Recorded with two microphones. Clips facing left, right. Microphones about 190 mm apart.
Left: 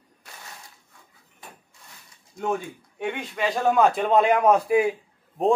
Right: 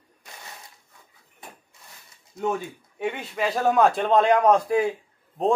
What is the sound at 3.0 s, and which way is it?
A man's voice, 5° right (ahead or behind).